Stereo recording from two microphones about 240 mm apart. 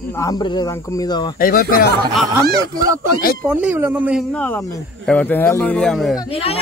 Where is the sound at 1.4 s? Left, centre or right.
Left.